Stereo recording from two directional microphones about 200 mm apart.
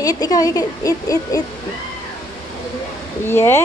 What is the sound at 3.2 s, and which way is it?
Speech, 10° left (ahead or behind).